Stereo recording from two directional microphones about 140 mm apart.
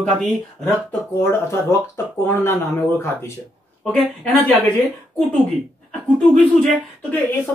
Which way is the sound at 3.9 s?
5° left (ahead or behind).